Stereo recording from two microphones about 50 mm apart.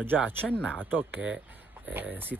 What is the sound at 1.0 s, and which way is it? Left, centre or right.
Speech, right.